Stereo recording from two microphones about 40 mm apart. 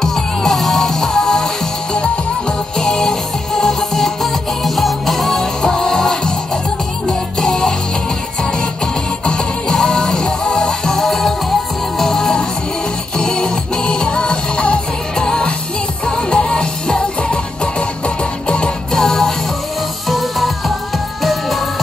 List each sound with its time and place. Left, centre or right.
0.0 s music: centre
2.8 s music: centre
5.4 s music: centre
9.2 s music: centre
18.9 s music: centre
20.1 s music: centre